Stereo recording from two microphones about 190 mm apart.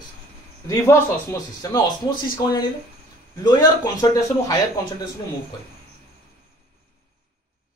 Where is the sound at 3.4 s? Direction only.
20° left (ahead or behind).